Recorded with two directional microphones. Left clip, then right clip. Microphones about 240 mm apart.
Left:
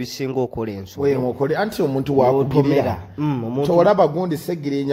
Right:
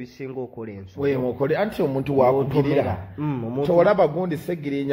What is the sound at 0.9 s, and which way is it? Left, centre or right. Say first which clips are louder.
Speech: left 3 dB; left.